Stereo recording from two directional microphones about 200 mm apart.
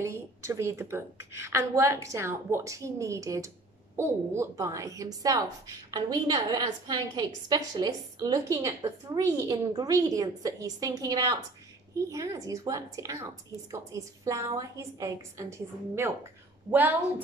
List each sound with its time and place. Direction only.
0.0 s a woman's voice: 15° right (ahead or behind)